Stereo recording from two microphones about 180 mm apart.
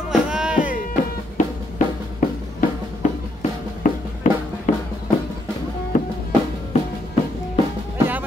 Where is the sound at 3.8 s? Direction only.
45° left (ahead or behind).